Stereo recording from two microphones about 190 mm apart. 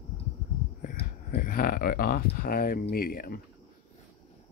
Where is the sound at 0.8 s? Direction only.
45° left (ahead or behind).